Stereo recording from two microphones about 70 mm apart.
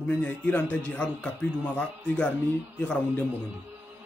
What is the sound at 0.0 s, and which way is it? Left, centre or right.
Speech, centre.